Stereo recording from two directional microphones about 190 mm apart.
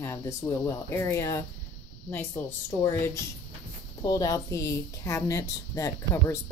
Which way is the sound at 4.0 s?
20° left (ahead or behind).